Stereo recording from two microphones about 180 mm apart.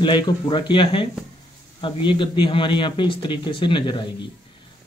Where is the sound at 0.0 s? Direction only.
25° left (ahead or behind).